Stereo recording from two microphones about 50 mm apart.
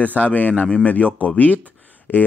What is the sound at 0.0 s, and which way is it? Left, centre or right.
Speech, left.